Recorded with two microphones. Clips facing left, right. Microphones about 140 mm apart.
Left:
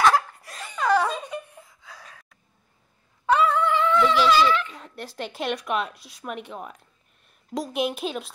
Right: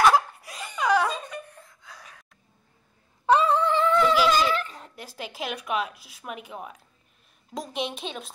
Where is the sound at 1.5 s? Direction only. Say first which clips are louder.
Left 1 dB; 5° left (ahead or behind).